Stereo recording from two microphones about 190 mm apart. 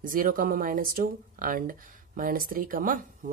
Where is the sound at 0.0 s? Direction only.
45° right (ahead or behind).